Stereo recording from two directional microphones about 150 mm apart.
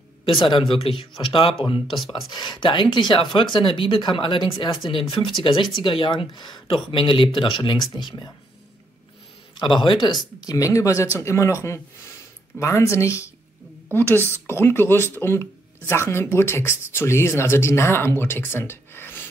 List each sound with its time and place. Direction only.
0.2 s speech: 35° left (ahead or behind)
2.0 s speech: centre (ahead or behind)
2.3 s speech: 30° left (ahead or behind)
9.6 s speech: 35° left (ahead or behind); by 19.2 s 15° left (ahead or behind)